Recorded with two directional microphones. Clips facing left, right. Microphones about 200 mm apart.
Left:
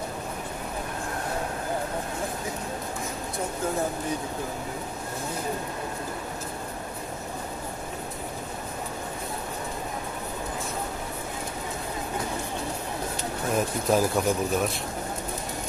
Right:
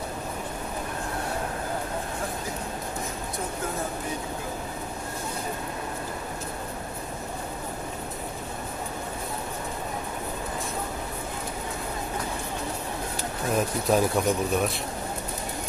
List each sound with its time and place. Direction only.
13.5 s speech: centre (ahead or behind)